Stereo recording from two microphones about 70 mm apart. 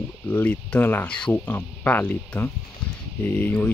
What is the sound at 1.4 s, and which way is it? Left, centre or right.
Speech, left.